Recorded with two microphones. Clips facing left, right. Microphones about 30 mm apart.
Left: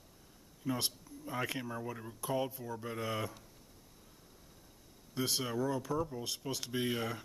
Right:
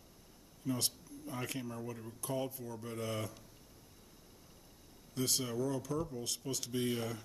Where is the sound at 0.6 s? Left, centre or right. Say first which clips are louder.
Left 1 dB; left.